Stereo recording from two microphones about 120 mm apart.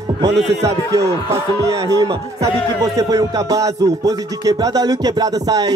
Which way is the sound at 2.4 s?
30° right (ahead or behind).